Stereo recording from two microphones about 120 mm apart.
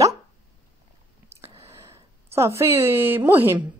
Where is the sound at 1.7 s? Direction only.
20° right (ahead or behind).